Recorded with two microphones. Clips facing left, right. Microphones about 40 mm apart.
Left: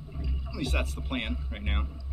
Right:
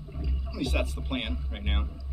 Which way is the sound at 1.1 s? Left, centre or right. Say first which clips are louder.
Even; centre.